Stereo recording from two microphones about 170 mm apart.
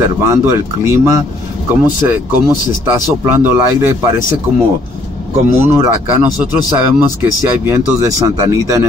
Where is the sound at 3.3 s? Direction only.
15° right (ahead or behind).